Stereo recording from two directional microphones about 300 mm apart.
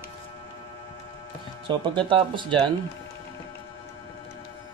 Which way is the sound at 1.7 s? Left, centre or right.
Centre.